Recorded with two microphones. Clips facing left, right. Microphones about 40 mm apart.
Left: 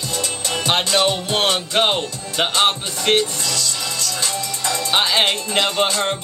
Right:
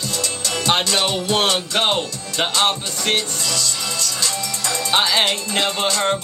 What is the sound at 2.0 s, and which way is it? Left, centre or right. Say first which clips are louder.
Speech: left 1 dB; left.